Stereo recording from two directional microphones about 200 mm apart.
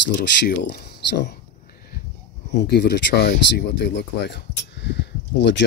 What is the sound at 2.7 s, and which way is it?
Speech, 55° left (ahead or behind).